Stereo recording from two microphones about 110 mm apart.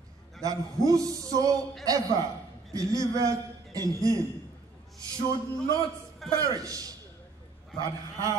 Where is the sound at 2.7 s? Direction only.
30° right (ahead or behind).